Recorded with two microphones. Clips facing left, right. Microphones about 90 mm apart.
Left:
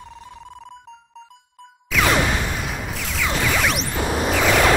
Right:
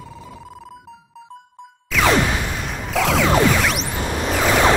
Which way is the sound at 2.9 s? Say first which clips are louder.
Right 12 dB; 90° right.